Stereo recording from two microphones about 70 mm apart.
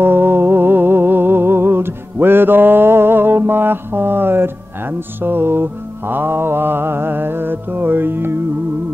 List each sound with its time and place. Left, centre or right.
0.0 s music: right